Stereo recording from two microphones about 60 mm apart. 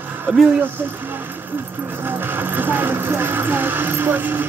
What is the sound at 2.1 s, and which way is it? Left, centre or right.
Speech, right.